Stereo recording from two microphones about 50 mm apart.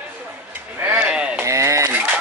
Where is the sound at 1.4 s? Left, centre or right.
Right.